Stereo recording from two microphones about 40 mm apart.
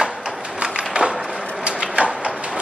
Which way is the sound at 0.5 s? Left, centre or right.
Right.